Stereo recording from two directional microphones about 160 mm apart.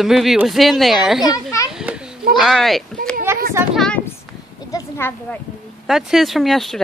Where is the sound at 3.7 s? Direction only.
5° left (ahead or behind).